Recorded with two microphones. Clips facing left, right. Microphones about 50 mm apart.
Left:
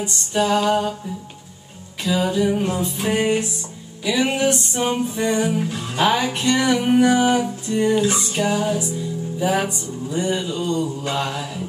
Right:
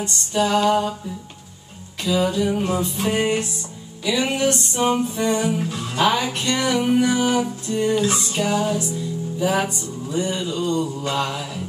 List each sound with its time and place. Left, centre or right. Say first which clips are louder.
0.0 s music: even; centre
2.1 s music: left 1 dB; centre
4.9 s music: even; centre
5.4 s music: left 1 dB; centre